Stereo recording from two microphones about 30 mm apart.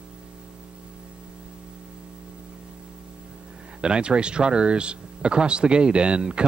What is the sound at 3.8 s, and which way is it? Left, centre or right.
Speech, right.